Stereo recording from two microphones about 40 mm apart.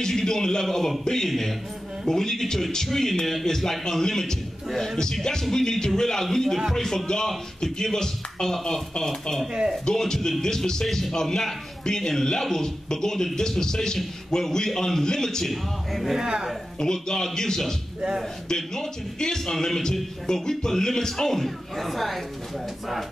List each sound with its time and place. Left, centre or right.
0.0 s a man's voice: centre
9.5 s speech: centre
9.8 s a man's voice: centre
15.9 s speech: centre
16.2 s a woman's voice: centre
16.8 s a man's voice: centre